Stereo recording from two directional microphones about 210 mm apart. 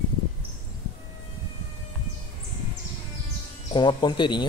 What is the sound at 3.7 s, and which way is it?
Speech, 20° left (ahead or behind).